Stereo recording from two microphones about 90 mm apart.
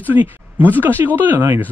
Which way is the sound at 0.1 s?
20° right (ahead or behind).